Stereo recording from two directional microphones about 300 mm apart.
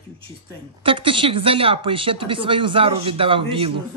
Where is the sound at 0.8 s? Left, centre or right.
Centre.